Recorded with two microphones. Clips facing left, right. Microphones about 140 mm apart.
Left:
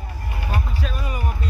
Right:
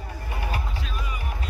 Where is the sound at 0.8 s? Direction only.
45° left (ahead or behind).